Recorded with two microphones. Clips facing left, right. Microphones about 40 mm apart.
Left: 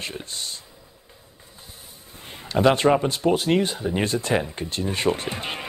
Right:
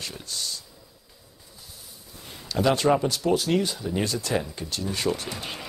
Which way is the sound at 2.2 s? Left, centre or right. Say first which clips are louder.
Left 4 dB; left.